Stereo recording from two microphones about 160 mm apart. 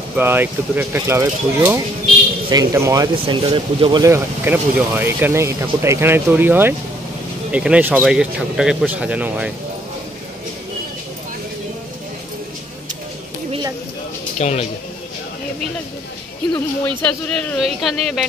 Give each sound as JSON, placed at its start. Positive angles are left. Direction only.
{"t": 0.1, "sound": "speech", "side_deg": -10}
{"t": 3.4, "sound": "speech", "side_deg": -30}
{"t": 4.0, "sound": "speech", "side_deg": -15}
{"t": 14.4, "sound": "a man's voice", "side_deg": 45}
{"t": 17.0, "sound": "speech", "side_deg": 10}